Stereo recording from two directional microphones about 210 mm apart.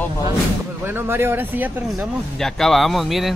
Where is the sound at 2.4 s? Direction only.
Centre (ahead or behind).